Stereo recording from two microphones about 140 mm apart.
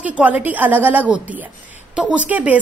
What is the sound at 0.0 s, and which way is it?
A woman's voice, 10° right (ahead or behind).